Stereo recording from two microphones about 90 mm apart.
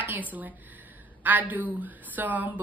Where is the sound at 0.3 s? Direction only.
20° right (ahead or behind).